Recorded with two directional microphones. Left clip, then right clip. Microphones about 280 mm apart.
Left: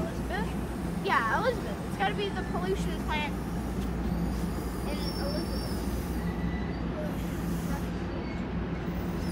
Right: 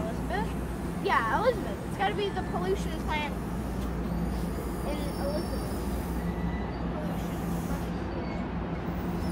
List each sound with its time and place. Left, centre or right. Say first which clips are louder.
1.0 s hubbub: right 1 dB; right